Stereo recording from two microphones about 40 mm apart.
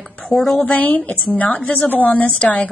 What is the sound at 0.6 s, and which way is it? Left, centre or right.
A woman's voice, left.